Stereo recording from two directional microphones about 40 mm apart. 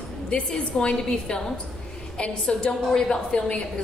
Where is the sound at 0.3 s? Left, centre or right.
Left.